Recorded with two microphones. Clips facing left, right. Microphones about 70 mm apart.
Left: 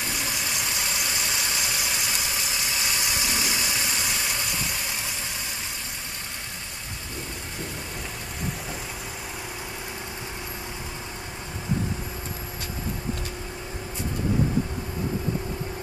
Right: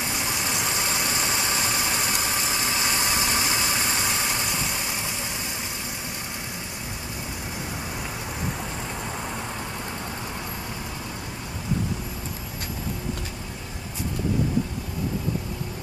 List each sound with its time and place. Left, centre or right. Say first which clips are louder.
0.5 s vehicle: right 3 dB; right